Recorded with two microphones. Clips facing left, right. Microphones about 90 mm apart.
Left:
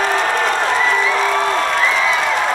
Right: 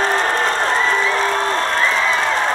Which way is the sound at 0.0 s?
35° right (ahead or behind).